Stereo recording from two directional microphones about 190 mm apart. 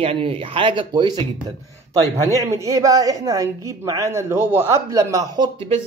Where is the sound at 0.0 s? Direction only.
30° right (ahead or behind).